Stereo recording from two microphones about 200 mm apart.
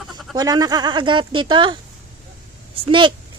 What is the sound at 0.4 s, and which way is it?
Speech, 20° right (ahead or behind).